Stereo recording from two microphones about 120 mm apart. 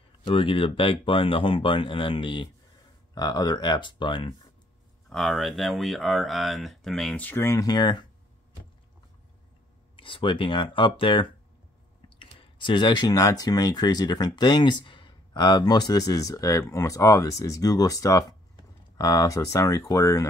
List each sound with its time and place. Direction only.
0.3 s speech: 50° left (ahead or behind)
3.2 s speech: 30° left (ahead or behind)
5.1 s speech: centre (ahead or behind)
7.2 s speech: 15° left (ahead or behind); by 8.1 s 40° left (ahead or behind)
9.9 s speech: 45° left (ahead or behind); by 20.2 s 25° left (ahead or behind)